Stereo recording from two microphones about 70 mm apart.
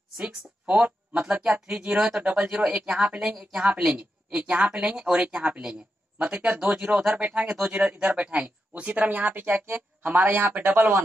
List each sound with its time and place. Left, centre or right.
0.2 s speech: centre